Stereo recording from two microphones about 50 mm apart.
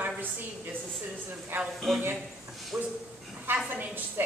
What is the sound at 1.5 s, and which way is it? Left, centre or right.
Speech, right.